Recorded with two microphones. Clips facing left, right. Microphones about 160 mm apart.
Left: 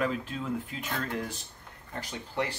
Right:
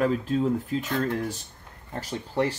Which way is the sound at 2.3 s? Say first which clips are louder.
Right 7 dB; 40° right (ahead or behind).